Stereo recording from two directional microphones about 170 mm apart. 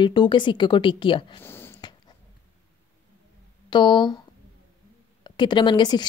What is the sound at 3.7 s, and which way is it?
Speech, 25° left (ahead or behind).